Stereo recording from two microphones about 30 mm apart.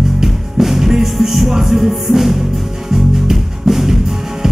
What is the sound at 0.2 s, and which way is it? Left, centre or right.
Music, centre.